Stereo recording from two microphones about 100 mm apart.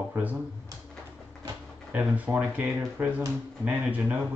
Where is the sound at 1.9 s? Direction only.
15° right (ahead or behind).